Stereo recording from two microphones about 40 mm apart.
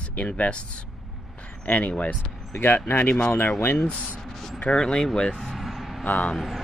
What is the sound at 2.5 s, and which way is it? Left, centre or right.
Speech, left.